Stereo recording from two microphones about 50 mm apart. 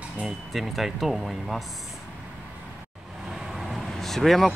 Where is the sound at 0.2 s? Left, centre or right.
Centre.